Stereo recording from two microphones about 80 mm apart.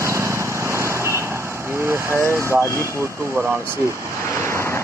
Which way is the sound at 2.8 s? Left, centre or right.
Right.